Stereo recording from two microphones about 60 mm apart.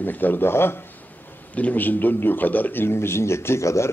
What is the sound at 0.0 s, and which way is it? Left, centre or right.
Speech, left.